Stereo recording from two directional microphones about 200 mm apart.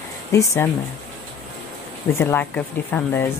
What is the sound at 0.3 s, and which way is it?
Speech, 15° left (ahead or behind).